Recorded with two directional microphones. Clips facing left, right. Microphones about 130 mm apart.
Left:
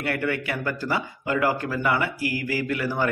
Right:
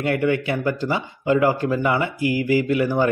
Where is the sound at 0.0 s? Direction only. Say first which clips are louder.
Right 6 dB; 20° right (ahead or behind).